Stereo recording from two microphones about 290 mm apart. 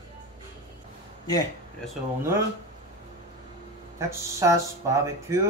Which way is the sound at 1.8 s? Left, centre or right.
Centre.